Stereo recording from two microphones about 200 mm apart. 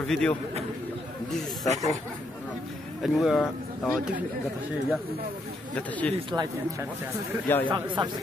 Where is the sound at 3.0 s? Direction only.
Centre (ahead or behind).